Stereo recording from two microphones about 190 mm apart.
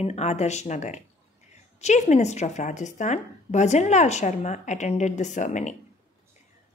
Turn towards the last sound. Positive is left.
turn(degrees=40)  # may be behind; listen again after turning